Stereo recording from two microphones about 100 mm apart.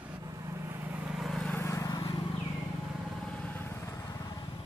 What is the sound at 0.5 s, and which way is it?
Vehicle, 25° right (ahead or behind).